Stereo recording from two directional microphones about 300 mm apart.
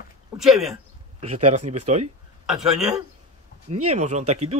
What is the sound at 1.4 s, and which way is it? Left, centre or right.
Speech, right.